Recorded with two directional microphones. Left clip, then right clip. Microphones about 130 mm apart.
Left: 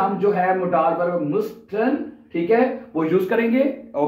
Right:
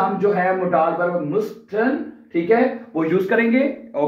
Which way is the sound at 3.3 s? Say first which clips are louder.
Right 1 dB; 25° left (ahead or behind).